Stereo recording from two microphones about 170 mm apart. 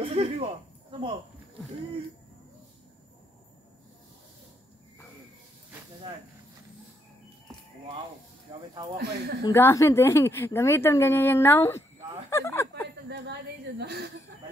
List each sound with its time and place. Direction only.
0.0 s a sound: 35° right (ahead or behind)
8.5 s speech: 25° right (ahead or behind)
8.9 s speech: 75° right (ahead or behind)
9.4 s a woman's voice: 15° left (ahead or behind)
12.3 s a sound: 15° left (ahead or behind)
13.1 s a woman's voice: 80° right